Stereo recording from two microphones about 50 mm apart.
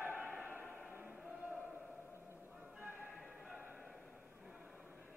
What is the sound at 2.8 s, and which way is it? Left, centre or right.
Music, right.